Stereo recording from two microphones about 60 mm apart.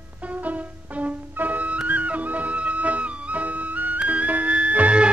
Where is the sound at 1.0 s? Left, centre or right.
Right.